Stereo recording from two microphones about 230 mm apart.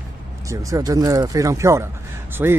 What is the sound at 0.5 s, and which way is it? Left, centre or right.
Speech, centre.